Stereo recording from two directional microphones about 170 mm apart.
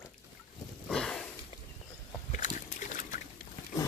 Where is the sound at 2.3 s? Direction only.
50° left (ahead or behind).